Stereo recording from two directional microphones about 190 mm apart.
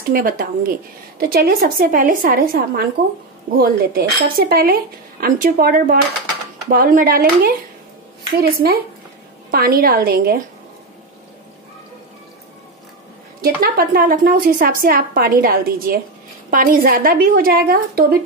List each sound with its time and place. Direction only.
0.1 s a woman's voice: 50° right (ahead or behind)
13.4 s a woman's voice: 50° right (ahead or behind)